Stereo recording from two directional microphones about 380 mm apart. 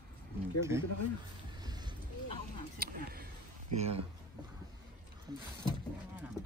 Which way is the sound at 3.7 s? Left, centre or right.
Centre.